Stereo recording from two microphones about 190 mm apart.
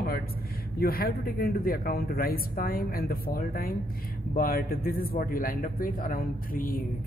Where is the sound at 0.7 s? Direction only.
50° left (ahead or behind).